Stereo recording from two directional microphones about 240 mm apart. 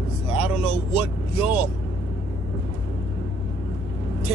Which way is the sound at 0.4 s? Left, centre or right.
Centre.